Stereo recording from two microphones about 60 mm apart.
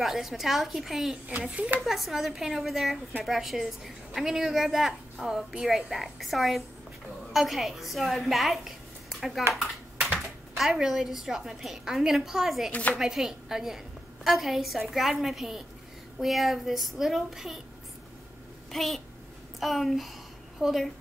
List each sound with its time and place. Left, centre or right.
0.0 s a woman's voice: centre
1.5 s speech: right
1.9 s a woman's voice: centre
18.7 s a woman's voice: centre